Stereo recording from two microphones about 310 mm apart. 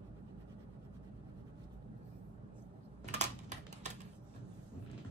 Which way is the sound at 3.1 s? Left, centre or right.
Right.